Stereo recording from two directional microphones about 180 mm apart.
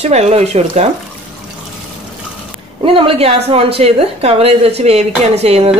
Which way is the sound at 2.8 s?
30° right (ahead or behind).